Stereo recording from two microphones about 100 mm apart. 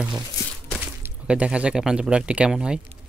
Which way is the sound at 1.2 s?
10° right (ahead or behind).